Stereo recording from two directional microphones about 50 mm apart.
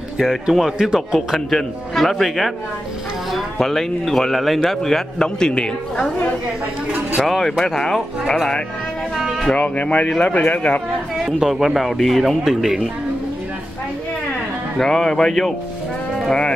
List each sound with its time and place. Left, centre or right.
0.2 s speech: centre
3.5 s a woman's voice: centre
7.2 s speech: centre
9.1 s music: centre
9.6 s a man's voice: left
11.3 s speech: centre
12.4 s speech: centre
14.8 s a woman's voice: centre
16.3 s speech: centre